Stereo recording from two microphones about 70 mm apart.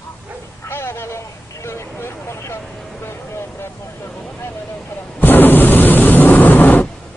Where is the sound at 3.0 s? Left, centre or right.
Left.